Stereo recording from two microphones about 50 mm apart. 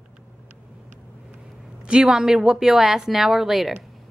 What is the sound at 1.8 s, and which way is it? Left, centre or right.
A woman's voice, centre.